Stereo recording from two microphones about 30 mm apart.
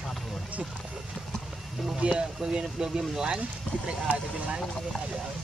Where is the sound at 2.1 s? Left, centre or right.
Right.